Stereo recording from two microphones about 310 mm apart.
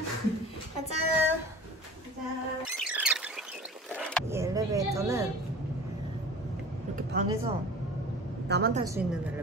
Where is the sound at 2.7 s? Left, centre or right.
Centre.